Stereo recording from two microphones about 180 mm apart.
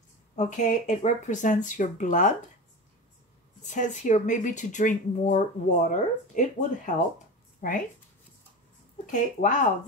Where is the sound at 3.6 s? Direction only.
40° left (ahead or behind).